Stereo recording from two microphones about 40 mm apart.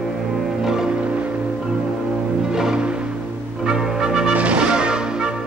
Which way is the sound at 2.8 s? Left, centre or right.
Right.